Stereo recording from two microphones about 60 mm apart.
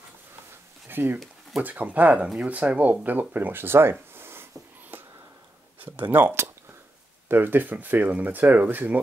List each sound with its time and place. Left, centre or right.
0.8 s speech: right
4.1 s a sound: right
7.2 s speech: right